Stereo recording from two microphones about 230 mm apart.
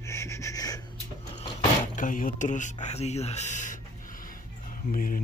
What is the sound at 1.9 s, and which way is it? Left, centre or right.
Mantra, left.